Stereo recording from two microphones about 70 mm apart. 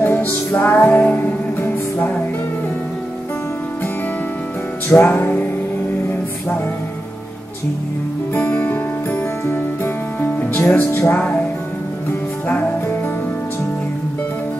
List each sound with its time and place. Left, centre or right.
0.0 s music: left
4.8 s music: left
8.4 s music: left
10.2 s music: left